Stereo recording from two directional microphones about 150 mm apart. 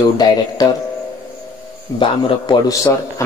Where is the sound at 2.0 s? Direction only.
25° left (ahead or behind).